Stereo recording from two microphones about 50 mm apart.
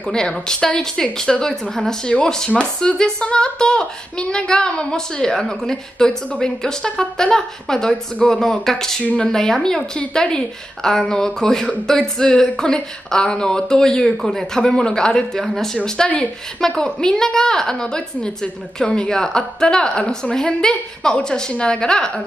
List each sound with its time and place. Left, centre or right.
0.0 s speech: centre
9.0 s speech: left
9.3 s a man's voice: centre
14.6 s speech: centre